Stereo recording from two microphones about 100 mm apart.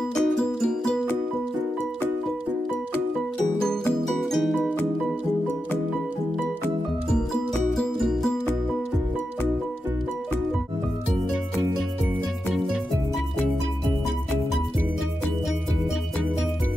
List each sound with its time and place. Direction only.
0.1 s music: 5° left (ahead or behind)
4.2 s music: centre (ahead or behind)
7.7 s music: 5° left (ahead or behind)